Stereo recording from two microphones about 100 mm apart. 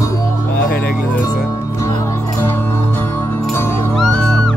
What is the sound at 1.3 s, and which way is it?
Music, 30° left (ahead or behind).